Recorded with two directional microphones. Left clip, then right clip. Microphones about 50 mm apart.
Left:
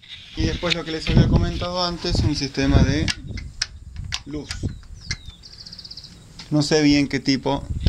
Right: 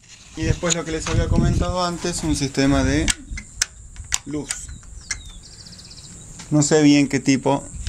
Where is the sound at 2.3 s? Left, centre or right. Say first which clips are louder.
Right 4 dB; right.